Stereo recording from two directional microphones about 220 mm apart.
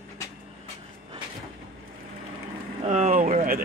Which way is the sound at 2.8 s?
35° right (ahead or behind).